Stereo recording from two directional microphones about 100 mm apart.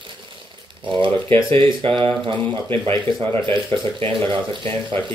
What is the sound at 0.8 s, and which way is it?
Speech, 55° right (ahead or behind).